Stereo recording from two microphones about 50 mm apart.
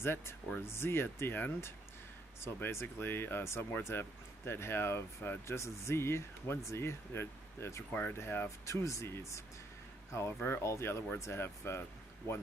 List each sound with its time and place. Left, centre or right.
0.0 s speech: left
2.4 s speech: left
5.5 s speech: left
7.9 s speech: left
8.5 s speech: left
10.1 s speech: left
10.6 s speech: left
11.1 s speech: left
11.4 s speech: left